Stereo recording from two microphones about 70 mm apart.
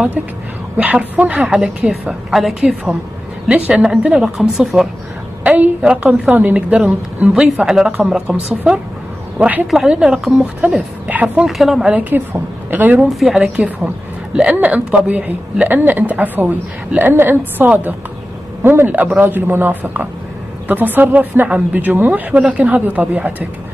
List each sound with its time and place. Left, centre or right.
0.7 s a woman's voice: right
2.6 s a woman's voice: centre
9.4 s speech: right
9.8 s a woman's voice: centre
11.4 s a woman's voice: centre
11.9 s speech: right
13.1 s a woman's voice: centre
14.3 s speech: centre